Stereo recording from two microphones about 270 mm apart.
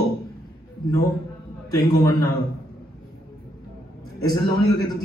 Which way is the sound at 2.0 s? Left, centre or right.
Centre.